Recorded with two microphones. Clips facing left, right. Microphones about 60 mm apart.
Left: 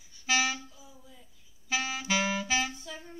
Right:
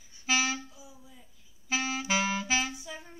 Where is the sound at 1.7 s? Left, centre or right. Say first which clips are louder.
Right 1 dB; centre.